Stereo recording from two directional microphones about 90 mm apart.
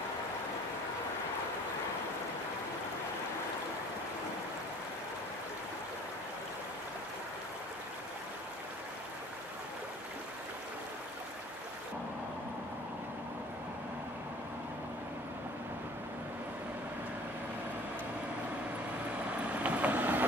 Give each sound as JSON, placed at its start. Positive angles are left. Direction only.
{"t": 19.6, "sound": "vehicle", "side_deg": -20}